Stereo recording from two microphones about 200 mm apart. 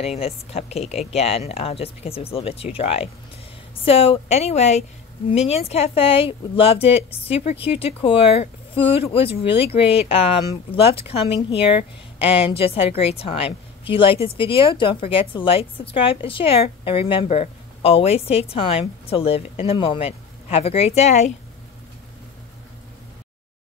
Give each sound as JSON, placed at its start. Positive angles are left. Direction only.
{"t": 0.0, "sound": "a woman's voice", "side_deg": 30}